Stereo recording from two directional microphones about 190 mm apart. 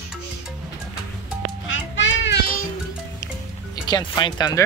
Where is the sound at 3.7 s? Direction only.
20° left (ahead or behind).